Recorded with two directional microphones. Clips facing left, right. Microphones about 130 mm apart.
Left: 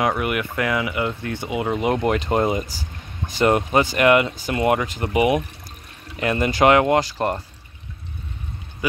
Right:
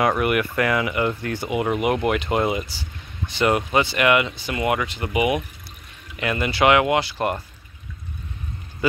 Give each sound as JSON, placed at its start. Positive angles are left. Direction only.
{"t": 0.2, "sound": "speech", "side_deg": 20}
{"t": 1.9, "sound": "speech", "side_deg": 35}